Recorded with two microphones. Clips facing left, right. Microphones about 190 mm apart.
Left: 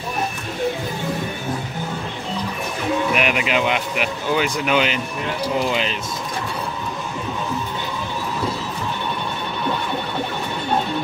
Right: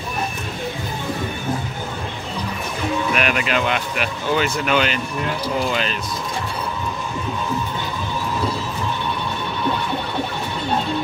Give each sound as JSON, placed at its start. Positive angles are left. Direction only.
{"t": 3.2, "sound": "speech", "side_deg": 15}